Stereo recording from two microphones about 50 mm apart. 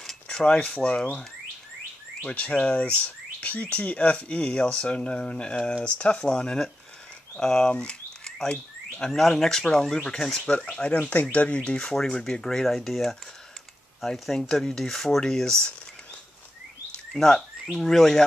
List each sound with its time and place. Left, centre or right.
0.0 s a sound: centre
0.7 s speech: left
2.2 s chirp: left
3.7 s speech: left; by 7.7 s centre
7.7 s a sound: left
8.5 s frog: centre
9.1 s speech: centre
17.1 s a sound: centre
17.7 s speech: centre